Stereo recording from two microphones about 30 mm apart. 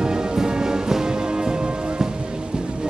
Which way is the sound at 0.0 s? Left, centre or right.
Right.